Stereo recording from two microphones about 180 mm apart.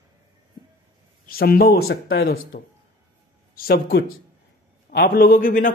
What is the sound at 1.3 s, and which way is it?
A man's voice, 55° left (ahead or behind).